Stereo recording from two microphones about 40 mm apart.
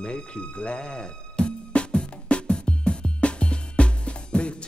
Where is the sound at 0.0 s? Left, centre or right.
Left.